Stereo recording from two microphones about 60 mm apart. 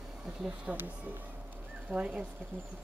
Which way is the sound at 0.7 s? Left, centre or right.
Right.